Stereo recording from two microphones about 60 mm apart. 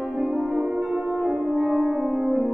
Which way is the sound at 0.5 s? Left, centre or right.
Centre.